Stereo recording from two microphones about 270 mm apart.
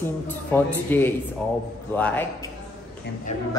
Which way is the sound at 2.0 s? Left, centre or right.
Centre.